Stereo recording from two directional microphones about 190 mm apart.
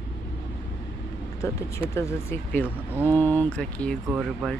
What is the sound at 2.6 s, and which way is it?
Speech, 10° right (ahead or behind).